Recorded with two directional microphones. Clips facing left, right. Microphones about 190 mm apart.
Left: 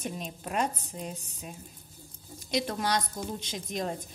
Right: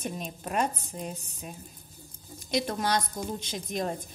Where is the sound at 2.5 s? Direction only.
50° right (ahead or behind).